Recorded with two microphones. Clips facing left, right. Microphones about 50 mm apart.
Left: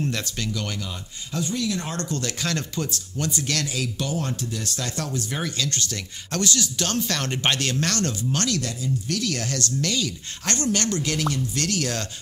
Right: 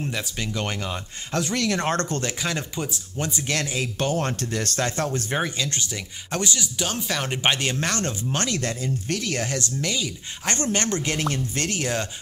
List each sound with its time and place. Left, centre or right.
0.0 s speech: centre
0.5 s speech: right
1.4 s speech: right
2.2 s speech: centre
4.0 s speech: right
4.8 s speech: right
5.6 s speech: centre
8.6 s speech: right; by 10.6 s centre
10.6 s speech: right